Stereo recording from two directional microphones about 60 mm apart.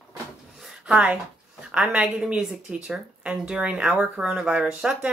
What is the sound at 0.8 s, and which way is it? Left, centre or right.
A woman's voice, centre.